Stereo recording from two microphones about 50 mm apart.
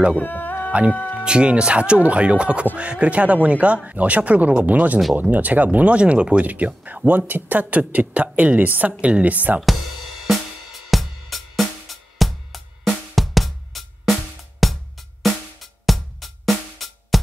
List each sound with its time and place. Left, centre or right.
0.1 s music: left
1.2 s a woman's voice: centre
10.2 s music: centre